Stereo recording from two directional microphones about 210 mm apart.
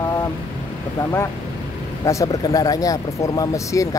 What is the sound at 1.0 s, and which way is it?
Speech, 15° left (ahead or behind).